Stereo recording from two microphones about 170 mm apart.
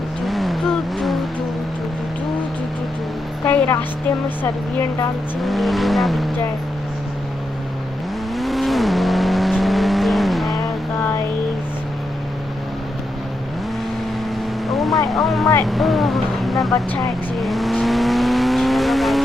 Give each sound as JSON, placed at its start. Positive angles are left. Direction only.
{"t": 0.3, "sound": "vehicle", "side_deg": 0}
{"t": 3.4, "sound": "a woman's voice", "side_deg": 10}
{"t": 5.4, "sound": "vehicle", "side_deg": 0}
{"t": 8.4, "sound": "vehicle", "side_deg": 0}
{"t": 14.7, "sound": "vehicle", "side_deg": 0}
{"t": 16.7, "sound": "vehicle", "side_deg": 20}
{"t": 17.4, "sound": "vehicle", "side_deg": 0}